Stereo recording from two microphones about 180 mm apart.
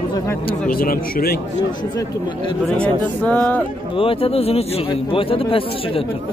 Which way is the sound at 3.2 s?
10° left (ahead or behind).